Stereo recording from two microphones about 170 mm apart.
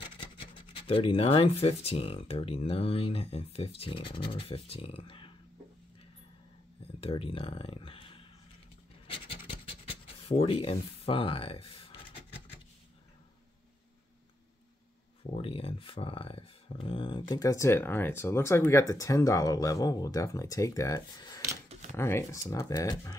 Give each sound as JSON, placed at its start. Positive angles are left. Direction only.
{"t": 0.7, "sound": "speech", "side_deg": 30}
{"t": 7.0, "sound": "speech", "side_deg": 35}
{"t": 9.0, "sound": "scratch", "side_deg": 30}
{"t": 15.3, "sound": "speech", "side_deg": 35}